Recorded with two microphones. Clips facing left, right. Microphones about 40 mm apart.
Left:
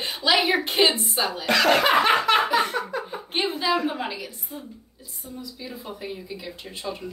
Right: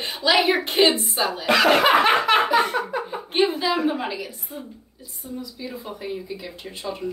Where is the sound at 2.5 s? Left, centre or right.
Centre.